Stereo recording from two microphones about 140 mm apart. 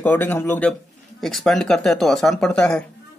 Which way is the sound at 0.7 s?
Centre (ahead or behind).